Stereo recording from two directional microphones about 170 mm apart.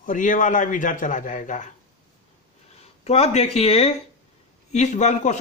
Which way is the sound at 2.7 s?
35° left (ahead or behind).